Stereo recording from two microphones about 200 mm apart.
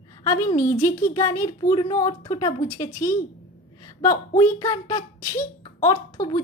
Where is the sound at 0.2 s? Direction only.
25° left (ahead or behind).